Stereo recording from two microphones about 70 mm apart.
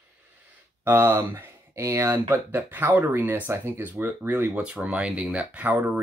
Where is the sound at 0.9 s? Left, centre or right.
Right.